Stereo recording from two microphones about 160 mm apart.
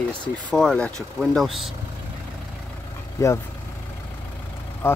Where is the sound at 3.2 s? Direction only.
20° left (ahead or behind).